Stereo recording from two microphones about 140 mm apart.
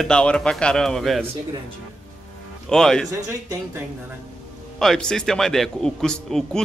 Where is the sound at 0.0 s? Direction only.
5° left (ahead or behind).